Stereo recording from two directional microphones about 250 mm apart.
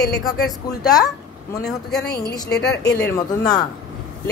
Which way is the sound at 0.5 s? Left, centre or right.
Centre.